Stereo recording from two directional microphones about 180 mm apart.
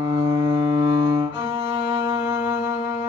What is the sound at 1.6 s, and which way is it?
Music, 25° right (ahead or behind).